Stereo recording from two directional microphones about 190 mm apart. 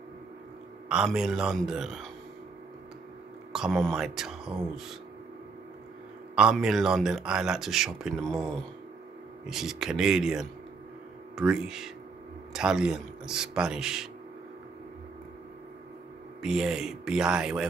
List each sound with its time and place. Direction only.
0.8 s speech: 5° right (ahead or behind)
3.5 s speech: centre (ahead or behind)
6.3 s speech: 5° right (ahead or behind)
9.5 s speech: centre (ahead or behind)
16.4 s speech: centre (ahead or behind)